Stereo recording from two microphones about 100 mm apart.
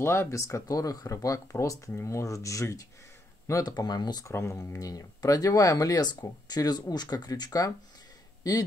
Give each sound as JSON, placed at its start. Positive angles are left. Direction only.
{"t": 0.0, "sound": "speech", "side_deg": 25}
{"t": 4.3, "sound": "speech", "side_deg": 25}